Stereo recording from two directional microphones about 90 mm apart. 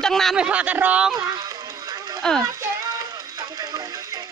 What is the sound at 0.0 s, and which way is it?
Speech, 5° left (ahead or behind).